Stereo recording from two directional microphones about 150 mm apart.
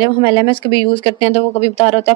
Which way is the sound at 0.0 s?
35° left (ahead or behind).